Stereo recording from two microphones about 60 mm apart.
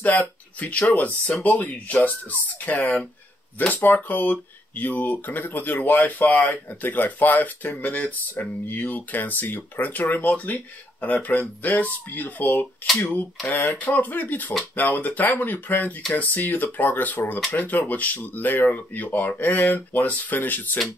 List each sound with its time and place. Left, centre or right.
0.0 s speech: left
13.7 s speech: left